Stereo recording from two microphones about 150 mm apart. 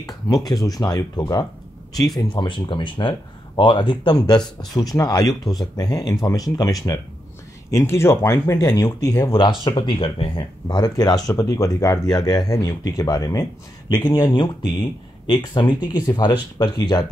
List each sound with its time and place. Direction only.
0.0 s speech: 25° left (ahead or behind)